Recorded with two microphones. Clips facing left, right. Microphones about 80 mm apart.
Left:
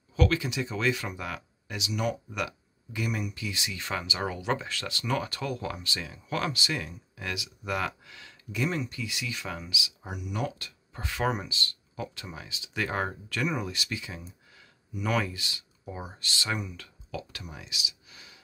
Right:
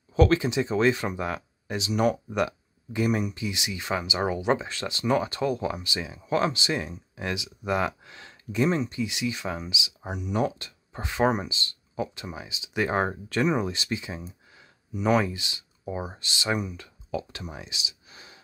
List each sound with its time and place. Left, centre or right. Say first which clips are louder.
0.1 s speech: right 6 dB; right